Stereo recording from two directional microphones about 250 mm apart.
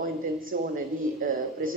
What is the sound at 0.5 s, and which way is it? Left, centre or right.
Speech, right.